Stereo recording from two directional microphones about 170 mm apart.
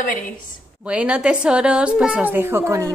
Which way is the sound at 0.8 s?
5° right (ahead or behind).